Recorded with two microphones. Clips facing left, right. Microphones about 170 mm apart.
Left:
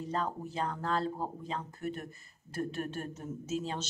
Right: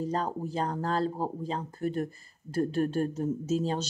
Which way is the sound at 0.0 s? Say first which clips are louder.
Right 4 dB; 40° right (ahead or behind).